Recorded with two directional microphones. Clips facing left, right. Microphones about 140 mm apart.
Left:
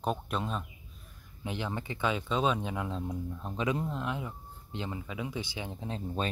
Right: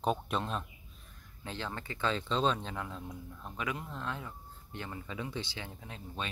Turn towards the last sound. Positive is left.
turn(degrees=30)  # may be behind; listen again after turning